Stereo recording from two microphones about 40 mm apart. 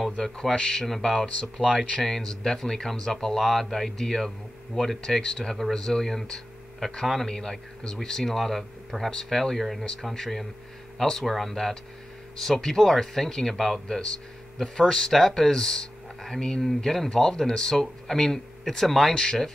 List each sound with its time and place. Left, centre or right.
0.2 s speech: centre
16.6 s speech: centre